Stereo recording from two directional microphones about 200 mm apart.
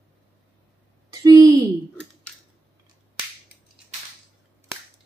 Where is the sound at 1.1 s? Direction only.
20° right (ahead or behind).